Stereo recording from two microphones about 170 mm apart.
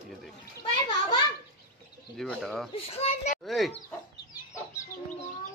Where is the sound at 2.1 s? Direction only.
Centre (ahead or behind).